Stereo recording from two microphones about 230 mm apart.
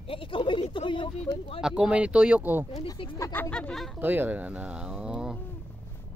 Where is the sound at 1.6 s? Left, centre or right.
Centre.